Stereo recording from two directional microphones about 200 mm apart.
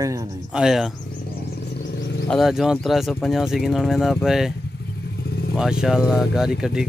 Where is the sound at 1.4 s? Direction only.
55° left (ahead or behind).